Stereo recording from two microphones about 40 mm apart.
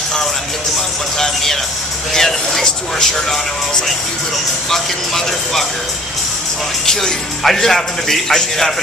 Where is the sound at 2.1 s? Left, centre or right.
Centre.